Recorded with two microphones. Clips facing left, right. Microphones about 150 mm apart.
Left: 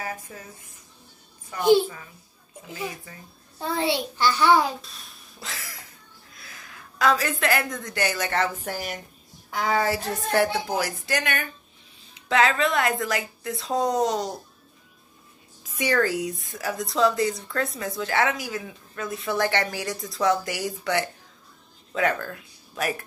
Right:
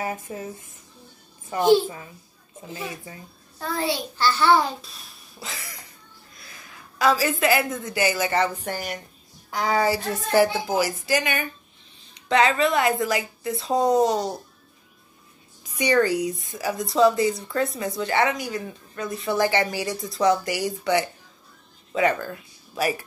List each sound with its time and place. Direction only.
0.0 s speech: 25° right (ahead or behind)
3.5 s a child's voice: 20° left (ahead or behind)
4.4 s a child's voice: 5° left (ahead or behind)
15.7 s speech: centre (ahead or behind)